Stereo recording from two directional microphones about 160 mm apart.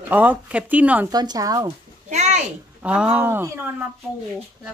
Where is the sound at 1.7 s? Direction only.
45° right (ahead or behind).